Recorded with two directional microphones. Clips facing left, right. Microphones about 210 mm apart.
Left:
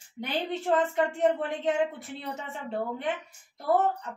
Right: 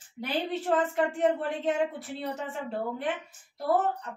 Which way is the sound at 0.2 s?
Centre (ahead or behind).